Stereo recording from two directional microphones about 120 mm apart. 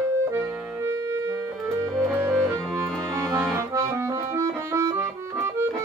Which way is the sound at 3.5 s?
25° right (ahead or behind).